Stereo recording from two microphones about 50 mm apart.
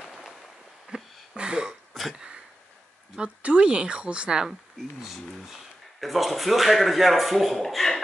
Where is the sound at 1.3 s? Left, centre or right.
Centre.